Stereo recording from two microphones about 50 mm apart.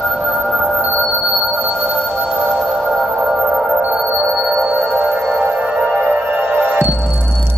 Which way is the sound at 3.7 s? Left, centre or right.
Right.